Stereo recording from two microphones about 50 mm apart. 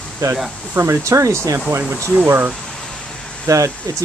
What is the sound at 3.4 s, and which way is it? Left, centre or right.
Speech, right.